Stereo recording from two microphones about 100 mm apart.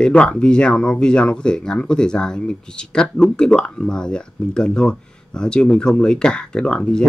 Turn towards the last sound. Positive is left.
turn(degrees=10)  # may be behind; listen again after turning